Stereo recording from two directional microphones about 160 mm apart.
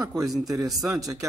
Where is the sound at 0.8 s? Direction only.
20° right (ahead or behind).